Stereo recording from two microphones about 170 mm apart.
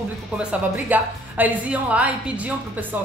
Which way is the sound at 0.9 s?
10° right (ahead or behind).